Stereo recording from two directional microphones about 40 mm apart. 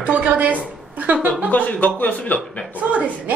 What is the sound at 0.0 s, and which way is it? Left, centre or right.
A woman's voice, right.